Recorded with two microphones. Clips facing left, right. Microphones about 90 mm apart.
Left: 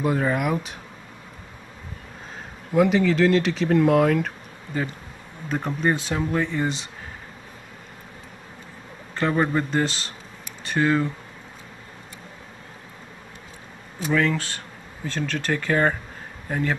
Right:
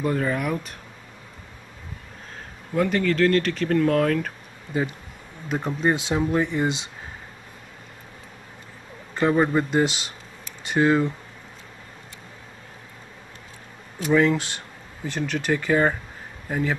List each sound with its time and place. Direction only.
0.0 s speech: 5° left (ahead or behind)
2.7 s speech: 5° left (ahead or behind)
5.8 s speech: 20° right (ahead or behind)
9.3 s speech: 10° right (ahead or behind)
14.1 s speech: 20° right (ahead or behind); by 16.7 s 5° right (ahead or behind)